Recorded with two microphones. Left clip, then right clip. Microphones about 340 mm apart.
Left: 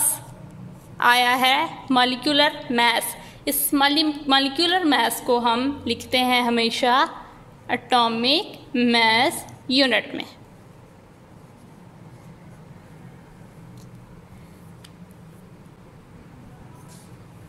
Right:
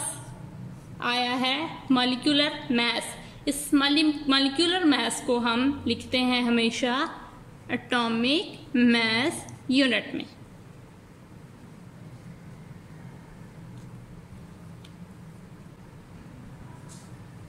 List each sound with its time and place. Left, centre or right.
0.9 s a woman's voice: centre